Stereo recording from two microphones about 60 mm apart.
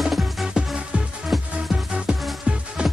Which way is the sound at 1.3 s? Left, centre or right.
Centre.